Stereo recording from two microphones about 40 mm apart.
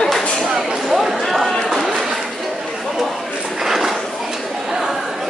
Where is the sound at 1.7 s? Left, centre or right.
Centre.